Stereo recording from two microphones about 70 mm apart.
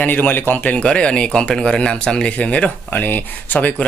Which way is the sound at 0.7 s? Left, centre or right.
Centre.